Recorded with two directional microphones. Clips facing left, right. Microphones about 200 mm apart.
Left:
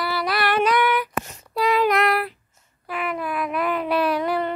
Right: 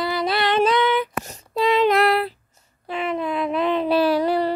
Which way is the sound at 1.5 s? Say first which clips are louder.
Right 2 dB; 25° right (ahead or behind).